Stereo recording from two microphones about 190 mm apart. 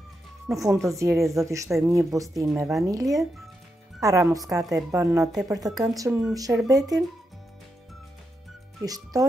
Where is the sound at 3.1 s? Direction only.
Centre (ahead or behind).